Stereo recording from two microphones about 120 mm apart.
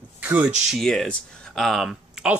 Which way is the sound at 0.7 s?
Centre (ahead or behind).